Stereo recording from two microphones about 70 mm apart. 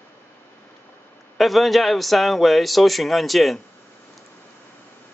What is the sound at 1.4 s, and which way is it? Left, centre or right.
A man's voice, centre.